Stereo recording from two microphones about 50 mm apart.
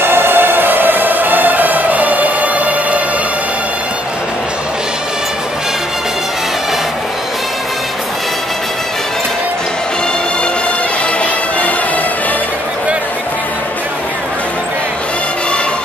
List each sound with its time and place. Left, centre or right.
0.0 s music: right